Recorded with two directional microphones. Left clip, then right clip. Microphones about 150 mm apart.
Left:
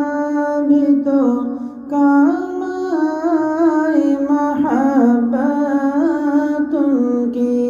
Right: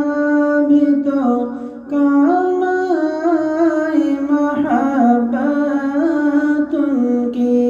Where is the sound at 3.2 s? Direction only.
30° left (ahead or behind).